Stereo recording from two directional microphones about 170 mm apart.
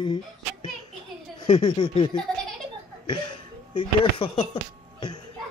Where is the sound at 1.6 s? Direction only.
30° left (ahead or behind).